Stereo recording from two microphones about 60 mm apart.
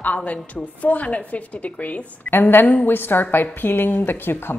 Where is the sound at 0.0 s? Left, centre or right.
Left.